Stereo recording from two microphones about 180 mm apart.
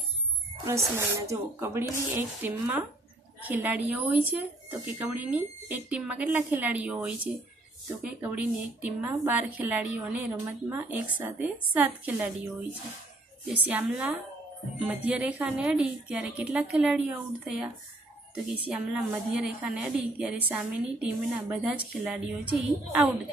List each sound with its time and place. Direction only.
0.7 s speech: 15° right (ahead or behind)
13.5 s speech: 5° right (ahead or behind)
18.7 s a woman's voice: 5° right (ahead or behind)